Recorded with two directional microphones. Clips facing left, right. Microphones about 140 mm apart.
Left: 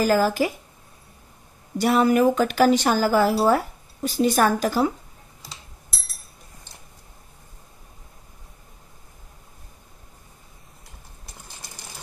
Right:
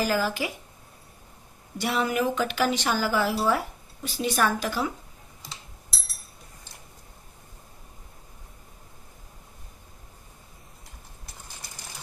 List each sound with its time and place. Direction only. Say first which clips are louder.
0.0 s a woman's voice: left 6 dB; 45° left (ahead or behind)
1.8 s a woman's voice: left 8 dB; 45° left (ahead or behind)